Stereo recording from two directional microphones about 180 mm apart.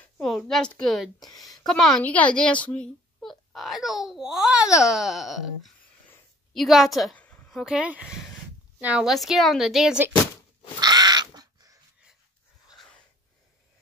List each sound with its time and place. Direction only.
0.2 s a woman's voice: centre (ahead or behind)
10.8 s crow: 25° right (ahead or behind)